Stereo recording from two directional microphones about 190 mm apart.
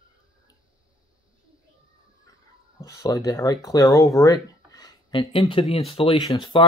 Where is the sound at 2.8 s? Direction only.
20° left (ahead or behind).